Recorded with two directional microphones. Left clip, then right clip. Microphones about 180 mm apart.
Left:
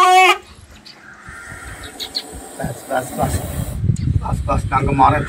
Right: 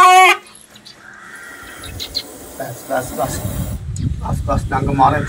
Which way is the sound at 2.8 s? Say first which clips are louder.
Right 1 dB; centre (ahead or behind).